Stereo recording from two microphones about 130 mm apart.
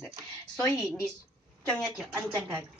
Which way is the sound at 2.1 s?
15° right (ahead or behind).